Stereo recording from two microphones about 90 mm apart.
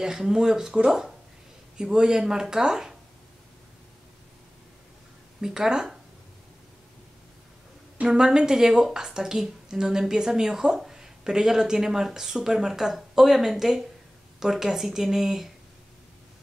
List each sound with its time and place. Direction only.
0.0 s speech: 5° right (ahead or behind)
5.4 s speech: 5° right (ahead or behind)
8.0 s speech: 10° right (ahead or behind)